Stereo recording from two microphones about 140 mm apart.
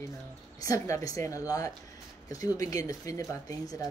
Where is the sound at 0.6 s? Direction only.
25° left (ahead or behind).